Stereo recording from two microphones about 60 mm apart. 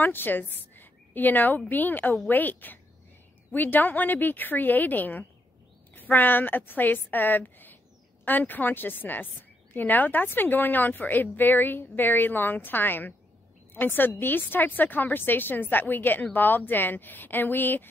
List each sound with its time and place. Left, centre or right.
0.0 s a woman's voice: left